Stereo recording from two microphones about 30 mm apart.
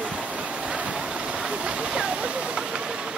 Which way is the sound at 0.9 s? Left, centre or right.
Right.